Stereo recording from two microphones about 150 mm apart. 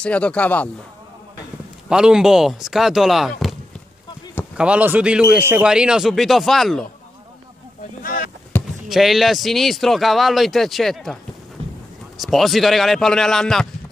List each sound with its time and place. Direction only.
0.0 s speech: 10° left (ahead or behind)
1.9 s speech: 5° right (ahead or behind)
4.6 s speech: 10° right (ahead or behind)
8.0 s boat: 70° left (ahead or behind)
8.8 s speech: centre (ahead or behind)
12.2 s speech: centre (ahead or behind)